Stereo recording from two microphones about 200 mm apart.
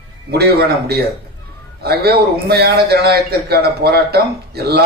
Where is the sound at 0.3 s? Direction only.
50° right (ahead or behind).